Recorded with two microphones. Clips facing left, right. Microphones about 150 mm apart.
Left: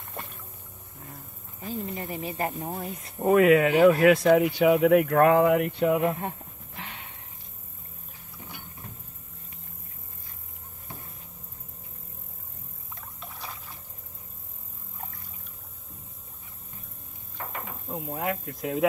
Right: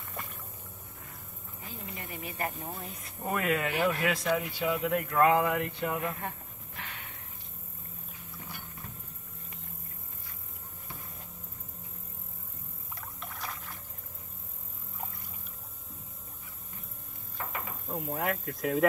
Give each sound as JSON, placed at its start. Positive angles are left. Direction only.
{"t": 0.1, "sound": "music", "side_deg": 30}
{"t": 1.7, "sound": "speech", "side_deg": 35}
{"t": 3.2, "sound": "speech", "side_deg": 70}
{"t": 3.7, "sound": "speech", "side_deg": 40}
{"t": 4.0, "sound": "speech", "side_deg": 60}
{"t": 5.9, "sound": "a sound", "side_deg": 30}
{"t": 13.2, "sound": "boat", "side_deg": 0}
{"t": 17.8, "sound": "a sound", "side_deg": 0}